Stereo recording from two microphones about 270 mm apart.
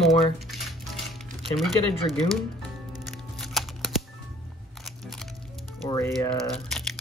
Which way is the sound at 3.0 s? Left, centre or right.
Centre.